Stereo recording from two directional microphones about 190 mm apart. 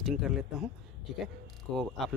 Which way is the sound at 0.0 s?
Centre (ahead or behind).